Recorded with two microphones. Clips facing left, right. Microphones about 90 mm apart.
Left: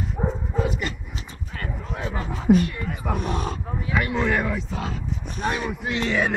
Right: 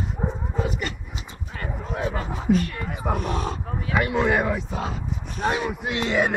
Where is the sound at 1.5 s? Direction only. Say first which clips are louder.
Right 2 dB; 10° right (ahead or behind).